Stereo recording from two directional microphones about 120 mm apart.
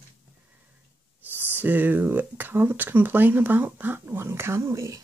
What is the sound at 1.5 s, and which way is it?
Speech, 15° right (ahead or behind).